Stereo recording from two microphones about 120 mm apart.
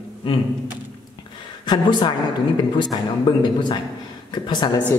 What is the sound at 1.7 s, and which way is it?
A man's voice, 40° left (ahead or behind).